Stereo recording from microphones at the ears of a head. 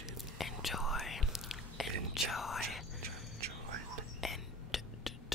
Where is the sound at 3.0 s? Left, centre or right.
Right.